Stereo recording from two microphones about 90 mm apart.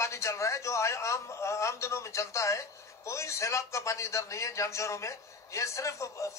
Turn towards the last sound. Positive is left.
turn(degrees=35)  # may be behind; listen again after turning